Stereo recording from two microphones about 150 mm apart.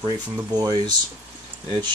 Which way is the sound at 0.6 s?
25° right (ahead or behind).